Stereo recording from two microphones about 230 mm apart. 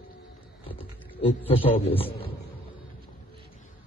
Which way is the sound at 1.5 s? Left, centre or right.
Left.